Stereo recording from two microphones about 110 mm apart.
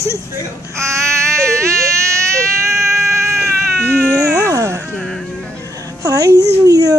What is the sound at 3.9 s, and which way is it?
Speech, 15° left (ahead or behind).